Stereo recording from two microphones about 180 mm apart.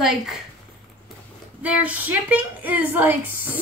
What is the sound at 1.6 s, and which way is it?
A woman's voice, 10° right (ahead or behind).